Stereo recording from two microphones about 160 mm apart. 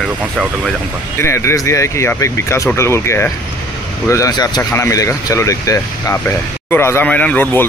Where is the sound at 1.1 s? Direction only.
15° left (ahead or behind).